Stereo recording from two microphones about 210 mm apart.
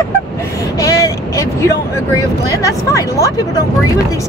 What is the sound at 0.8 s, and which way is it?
Speech, 15° left (ahead or behind).